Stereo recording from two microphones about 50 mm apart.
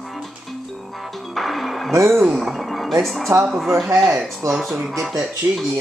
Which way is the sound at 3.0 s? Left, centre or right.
Centre.